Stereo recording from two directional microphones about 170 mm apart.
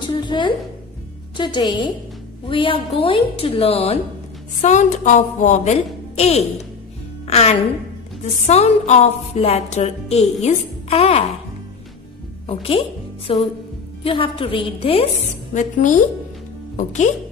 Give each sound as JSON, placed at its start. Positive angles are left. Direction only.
{"t": 0.0, "sound": "a woman's voice", "side_deg": 25}
{"t": 4.6, "sound": "a woman's voice", "side_deg": 45}
{"t": 12.4, "sound": "a woman's voice", "side_deg": 35}